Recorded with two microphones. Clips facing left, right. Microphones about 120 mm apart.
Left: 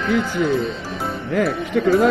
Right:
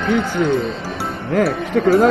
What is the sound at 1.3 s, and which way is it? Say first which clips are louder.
Speech: right 3 dB; 45° right (ahead or behind).